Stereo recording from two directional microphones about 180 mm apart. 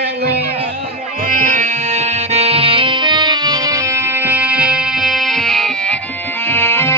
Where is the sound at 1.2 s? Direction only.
50° right (ahead or behind).